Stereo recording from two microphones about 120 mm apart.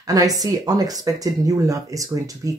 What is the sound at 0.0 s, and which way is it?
Speech, 30° right (ahead or behind).